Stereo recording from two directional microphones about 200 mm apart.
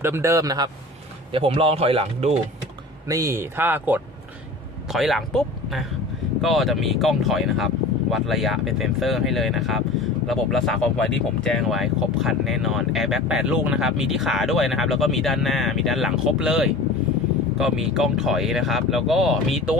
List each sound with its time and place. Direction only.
0.0 s speech: 15° right (ahead or behind)
1.3 s speech: 30° right (ahead or behind)
3.1 s speech: 15° right (ahead or behind)